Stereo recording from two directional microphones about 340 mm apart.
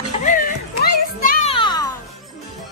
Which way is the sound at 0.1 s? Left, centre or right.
Left.